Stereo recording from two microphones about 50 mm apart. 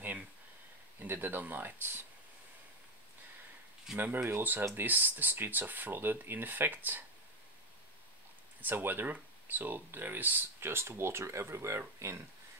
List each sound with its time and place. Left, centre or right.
0.9 s speech: right
4.0 s speech: right
8.5 s speech: right